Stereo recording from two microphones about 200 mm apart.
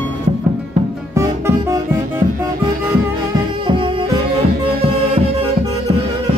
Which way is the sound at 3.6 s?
25° right (ahead or behind).